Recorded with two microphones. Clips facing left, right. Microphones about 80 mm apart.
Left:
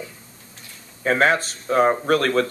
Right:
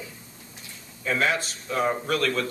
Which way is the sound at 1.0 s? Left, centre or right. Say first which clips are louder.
Left 7 dB; left.